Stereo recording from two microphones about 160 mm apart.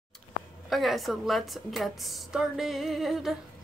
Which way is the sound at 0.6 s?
Centre (ahead or behind).